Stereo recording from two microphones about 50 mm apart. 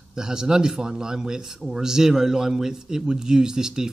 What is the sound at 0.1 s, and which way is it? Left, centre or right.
A man's voice, centre.